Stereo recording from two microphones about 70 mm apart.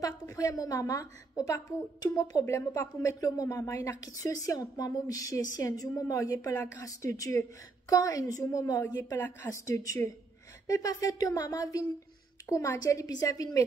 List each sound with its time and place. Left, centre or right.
0.0 s a woman's voice: left
6.5 s speech: left
6.8 s a woman's voice: left